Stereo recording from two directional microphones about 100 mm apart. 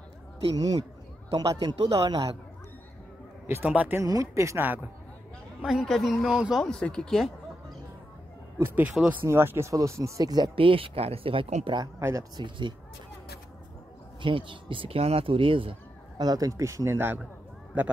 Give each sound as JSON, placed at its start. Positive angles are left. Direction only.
{"t": 0.6, "sound": "a man's voice", "side_deg": -40}
{"t": 3.4, "sound": "speech", "side_deg": -20}
{"t": 4.0, "sound": "a man's voice", "side_deg": -35}
{"t": 5.7, "sound": "speech", "side_deg": 0}
{"t": 6.6, "sound": "speech", "side_deg": 5}
{"t": 8.5, "sound": "speech", "side_deg": -25}
{"t": 10.5, "sound": "speech", "side_deg": -60}
{"t": 12.0, "sound": "speech", "side_deg": -25}
{"t": 12.4, "sound": "speech", "side_deg": -50}
{"t": 14.2, "sound": "speech", "side_deg": -55}
{"t": 16.2, "sound": "a man's voice", "side_deg": -40}